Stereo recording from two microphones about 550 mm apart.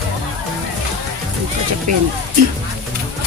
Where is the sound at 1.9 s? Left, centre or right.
Right.